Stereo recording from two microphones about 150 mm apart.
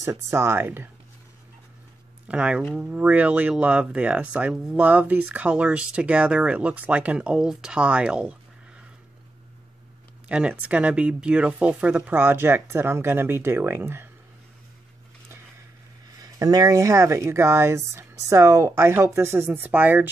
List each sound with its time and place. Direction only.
0.0 s speech: 20° right (ahead or behind)
2.2 s speech: 5° right (ahead or behind)
10.2 s speech: 10° right (ahead or behind)
16.2 s speech: 25° right (ahead or behind)